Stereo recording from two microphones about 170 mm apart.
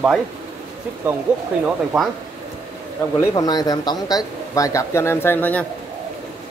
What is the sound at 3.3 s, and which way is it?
Speech, 20° left (ahead or behind).